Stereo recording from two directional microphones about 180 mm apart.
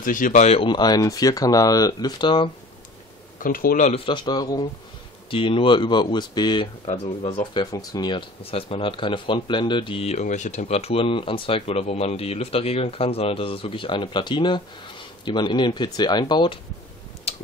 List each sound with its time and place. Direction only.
0.0 s speech: 45° left (ahead or behind); by 2.5 s 25° left (ahead or behind)
3.3 s speech: 50° left (ahead or behind); by 16.5 s 25° left (ahead or behind)
17.3 s tick-tock: 35° left (ahead or behind)